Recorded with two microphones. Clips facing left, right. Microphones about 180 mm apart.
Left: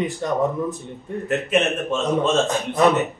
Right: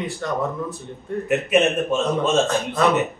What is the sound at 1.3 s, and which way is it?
A man's voice, 10° right (ahead or behind).